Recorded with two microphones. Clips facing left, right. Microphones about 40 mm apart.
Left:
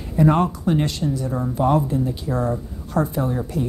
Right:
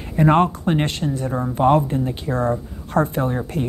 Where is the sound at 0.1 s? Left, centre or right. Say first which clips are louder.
Right 2 dB; right.